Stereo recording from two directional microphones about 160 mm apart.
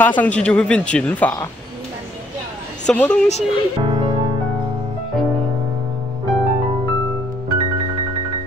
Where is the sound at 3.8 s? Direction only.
30° right (ahead or behind).